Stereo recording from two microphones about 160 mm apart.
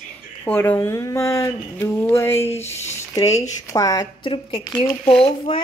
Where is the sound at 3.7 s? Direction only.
20° left (ahead or behind).